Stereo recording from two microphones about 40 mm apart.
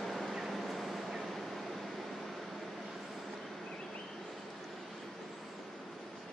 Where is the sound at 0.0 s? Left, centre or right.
Centre.